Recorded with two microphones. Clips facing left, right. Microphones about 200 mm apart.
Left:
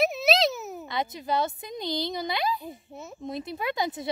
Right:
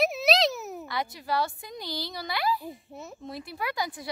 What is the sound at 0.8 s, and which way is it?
Speech, 20° left (ahead or behind).